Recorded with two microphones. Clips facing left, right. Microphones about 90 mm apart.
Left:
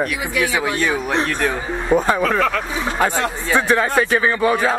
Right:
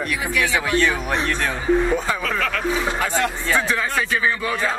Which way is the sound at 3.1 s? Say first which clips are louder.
Left 2 dB; 20° left (ahead or behind).